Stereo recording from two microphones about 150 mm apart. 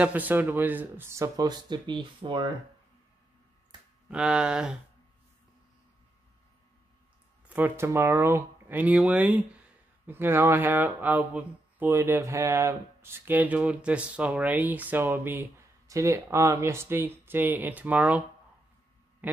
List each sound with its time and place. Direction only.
0.0 s speech: 10° right (ahead or behind); by 2.4 s 30° right (ahead or behind)
4.1 s speech: 5° right (ahead or behind)
7.4 s speech: 10° right (ahead or behind)
19.2 s a sound: 10° right (ahead or behind)